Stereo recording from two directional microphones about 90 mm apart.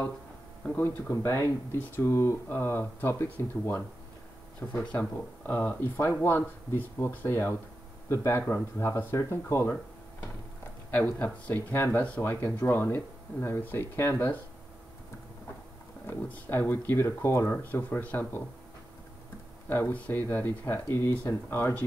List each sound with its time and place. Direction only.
0.7 s speech: 20° left (ahead or behind)
10.9 s speech: 20° left (ahead or behind)
16.1 s speech: 25° left (ahead or behind)
19.7 s speech: 25° left (ahead or behind)